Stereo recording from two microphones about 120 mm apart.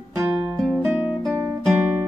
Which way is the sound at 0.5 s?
Centre (ahead or behind).